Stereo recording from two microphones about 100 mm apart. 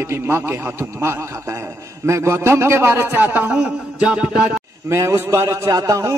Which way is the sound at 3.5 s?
5° right (ahead or behind).